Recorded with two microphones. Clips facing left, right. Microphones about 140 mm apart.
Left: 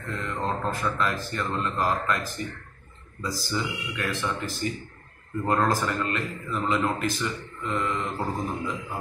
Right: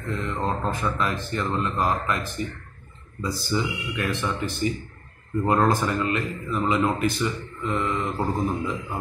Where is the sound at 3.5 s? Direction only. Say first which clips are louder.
Right 5 dB; 20° right (ahead or behind).